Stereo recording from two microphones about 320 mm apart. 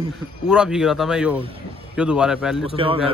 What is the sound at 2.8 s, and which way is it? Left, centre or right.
Speech, centre.